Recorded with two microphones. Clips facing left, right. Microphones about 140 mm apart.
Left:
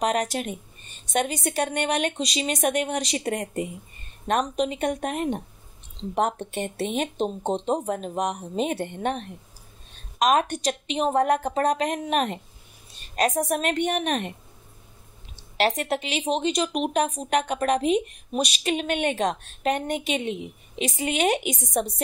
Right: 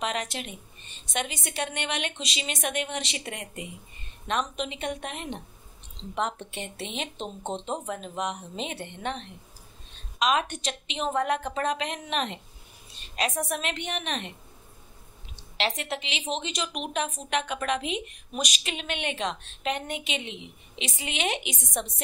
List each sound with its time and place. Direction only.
0.0 s a woman's voice: 45° left (ahead or behind)
15.5 s speech: 45° left (ahead or behind)